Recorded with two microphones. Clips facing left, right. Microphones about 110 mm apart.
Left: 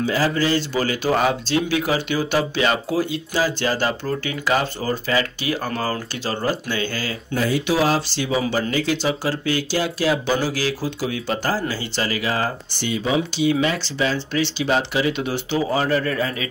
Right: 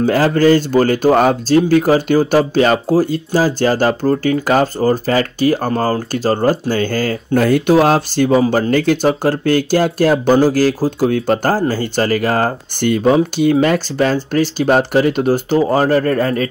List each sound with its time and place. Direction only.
0.0 s speech: 50° right (ahead or behind)